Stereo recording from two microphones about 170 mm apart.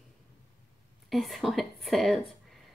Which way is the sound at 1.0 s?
Centre (ahead or behind).